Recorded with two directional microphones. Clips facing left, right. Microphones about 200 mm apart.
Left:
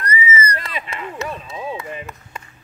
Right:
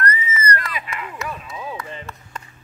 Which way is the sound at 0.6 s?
25° left (ahead or behind).